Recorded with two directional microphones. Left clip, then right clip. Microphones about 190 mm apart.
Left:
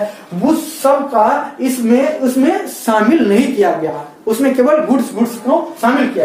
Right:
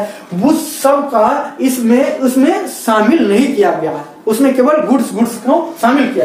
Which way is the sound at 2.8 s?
15° left (ahead or behind).